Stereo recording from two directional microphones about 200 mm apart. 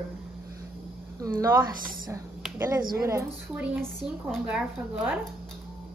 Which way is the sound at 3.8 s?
Centre (ahead or behind).